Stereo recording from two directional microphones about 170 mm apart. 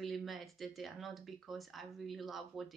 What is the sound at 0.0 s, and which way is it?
Speech, centre (ahead or behind).